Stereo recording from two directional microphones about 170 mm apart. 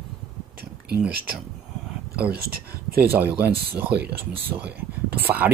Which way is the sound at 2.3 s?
60° right (ahead or behind).